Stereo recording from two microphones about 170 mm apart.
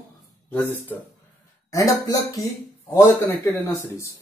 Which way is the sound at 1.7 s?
20° left (ahead or behind).